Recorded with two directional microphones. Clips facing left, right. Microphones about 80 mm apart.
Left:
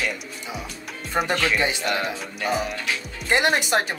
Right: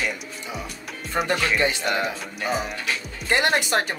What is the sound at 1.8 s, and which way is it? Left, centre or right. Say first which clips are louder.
Speech: right 1 dB; centre.